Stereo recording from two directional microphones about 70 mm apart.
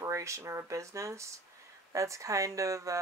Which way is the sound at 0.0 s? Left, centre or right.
Right.